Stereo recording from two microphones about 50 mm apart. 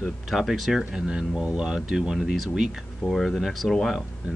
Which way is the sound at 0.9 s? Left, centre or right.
Centre.